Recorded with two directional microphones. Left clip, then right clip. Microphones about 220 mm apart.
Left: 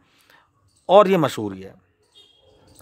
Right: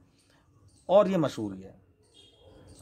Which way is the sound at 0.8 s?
35° left (ahead or behind).